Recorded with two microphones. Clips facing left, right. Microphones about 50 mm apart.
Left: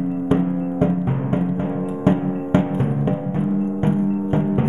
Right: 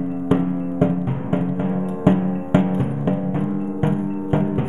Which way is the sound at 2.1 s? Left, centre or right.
Centre.